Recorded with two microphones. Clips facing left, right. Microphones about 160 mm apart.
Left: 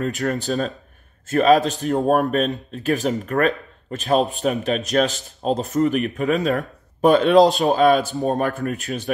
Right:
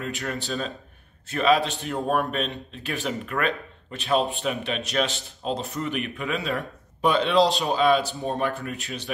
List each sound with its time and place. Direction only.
0.0 s a man's voice: 40° left (ahead or behind)